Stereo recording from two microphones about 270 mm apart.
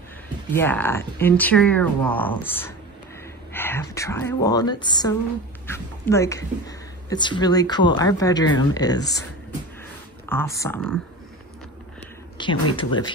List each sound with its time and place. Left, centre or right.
0.5 s speech: centre
10.2 s speech: centre
12.4 s speech: centre